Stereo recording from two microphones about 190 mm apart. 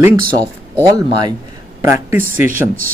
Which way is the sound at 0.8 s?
20° right (ahead or behind).